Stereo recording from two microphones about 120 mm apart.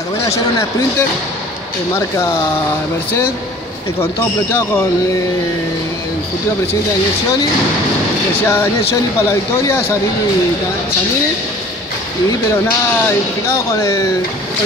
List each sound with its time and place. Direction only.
0.6 s speech: 30° left (ahead or behind)
4.0 s speech: 20° left (ahead or behind)
8.5 s speech: 25° left (ahead or behind)
13.5 s speech: 25° left (ahead or behind)